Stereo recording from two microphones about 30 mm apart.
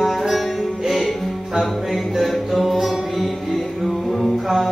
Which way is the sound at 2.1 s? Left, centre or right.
Centre.